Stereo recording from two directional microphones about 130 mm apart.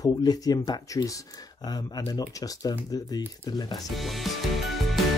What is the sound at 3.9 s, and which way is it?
Music, centre (ahead or behind).